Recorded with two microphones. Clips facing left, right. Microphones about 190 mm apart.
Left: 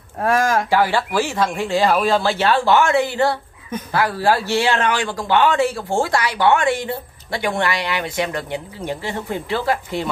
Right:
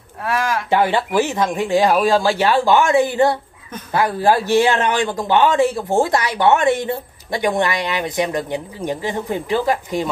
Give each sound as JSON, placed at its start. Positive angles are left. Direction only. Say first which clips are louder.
{"t": 0.2, "sound": "speech", "louder": "left 4 dB", "side_deg": 45}
{"t": 0.7, "sound": "speech", "louder": "right 1 dB", "side_deg": -20}